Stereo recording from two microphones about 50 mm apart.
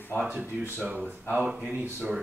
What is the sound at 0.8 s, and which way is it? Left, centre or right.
Speech, right.